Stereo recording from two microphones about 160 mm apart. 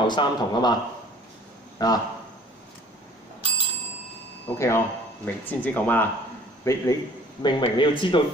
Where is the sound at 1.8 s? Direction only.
25° left (ahead or behind).